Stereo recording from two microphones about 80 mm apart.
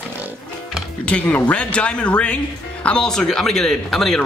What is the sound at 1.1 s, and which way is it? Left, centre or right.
Speech, centre.